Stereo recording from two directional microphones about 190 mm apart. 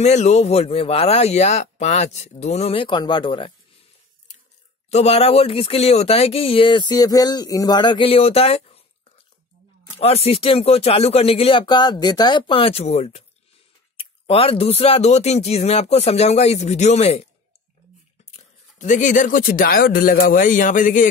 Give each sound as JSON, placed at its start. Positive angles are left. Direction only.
{"t": 0.0, "sound": "speech", "side_deg": 35}
{"t": 4.8, "sound": "speech", "side_deg": 35}
{"t": 9.9, "sound": "speech", "side_deg": 30}
{"t": 18.3, "sound": "speech", "side_deg": 40}